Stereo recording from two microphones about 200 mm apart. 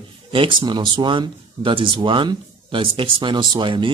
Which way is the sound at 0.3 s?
25° right (ahead or behind).